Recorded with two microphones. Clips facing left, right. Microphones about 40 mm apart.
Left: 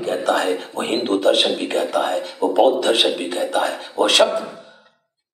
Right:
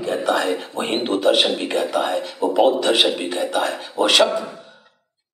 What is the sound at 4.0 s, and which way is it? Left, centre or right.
Speech, right.